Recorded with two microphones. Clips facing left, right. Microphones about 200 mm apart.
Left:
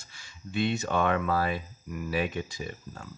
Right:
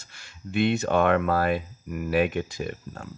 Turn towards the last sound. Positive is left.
turn(degrees=-55)  # may be behind; listen again after turning